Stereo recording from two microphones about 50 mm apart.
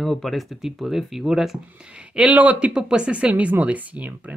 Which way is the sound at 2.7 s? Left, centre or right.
Centre.